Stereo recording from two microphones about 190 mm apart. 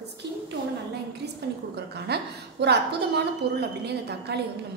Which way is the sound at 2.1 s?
60° right (ahead or behind).